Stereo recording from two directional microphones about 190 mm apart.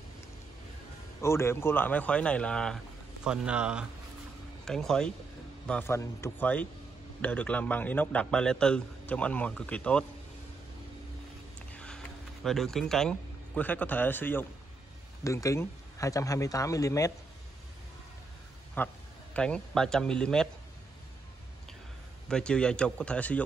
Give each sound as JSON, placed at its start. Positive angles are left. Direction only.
{"t": 1.2, "sound": "a man's voice", "side_deg": 15}
{"t": 11.7, "sound": "a sound", "side_deg": 5}
{"t": 12.4, "sound": "a man's voice", "side_deg": 0}
{"t": 18.8, "sound": "a man's voice", "side_deg": 10}
{"t": 22.3, "sound": "speech", "side_deg": 5}